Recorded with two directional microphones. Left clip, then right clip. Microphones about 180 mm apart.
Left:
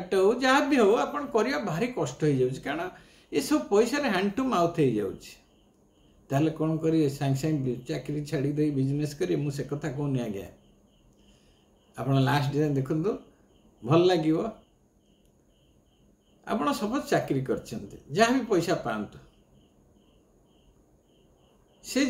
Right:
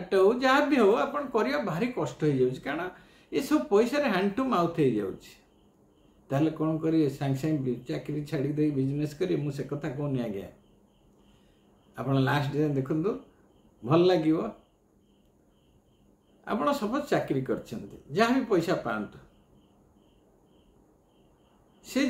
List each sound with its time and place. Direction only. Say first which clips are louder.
0.1 s speech: even; 15° left (ahead or behind)
11.9 s speech: left 1 dB; 15° left (ahead or behind)
16.4 s speech: even; 15° left (ahead or behind)
21.8 s speech: left 2 dB; 15° left (ahead or behind)